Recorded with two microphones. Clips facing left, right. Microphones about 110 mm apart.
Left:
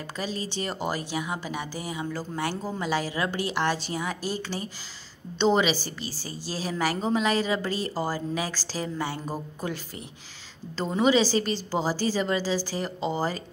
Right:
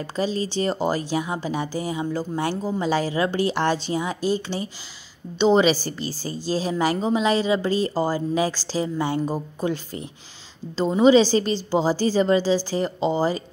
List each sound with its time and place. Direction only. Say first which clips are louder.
0.0 s speech: right 7 dB; 30° right (ahead or behind)